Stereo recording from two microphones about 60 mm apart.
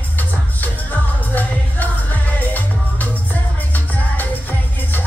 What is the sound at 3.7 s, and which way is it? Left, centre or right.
Music, left.